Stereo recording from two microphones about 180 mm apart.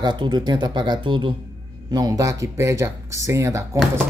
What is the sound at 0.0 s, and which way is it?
Speech, 25° right (ahead or behind).